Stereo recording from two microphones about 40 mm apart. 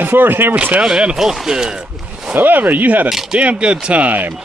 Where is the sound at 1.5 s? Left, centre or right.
Centre.